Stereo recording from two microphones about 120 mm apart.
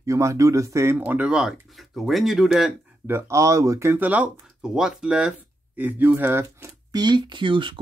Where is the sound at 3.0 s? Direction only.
20° right (ahead or behind).